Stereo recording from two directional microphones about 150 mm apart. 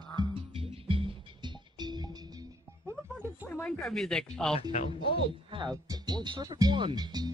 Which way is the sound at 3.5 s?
10° left (ahead or behind).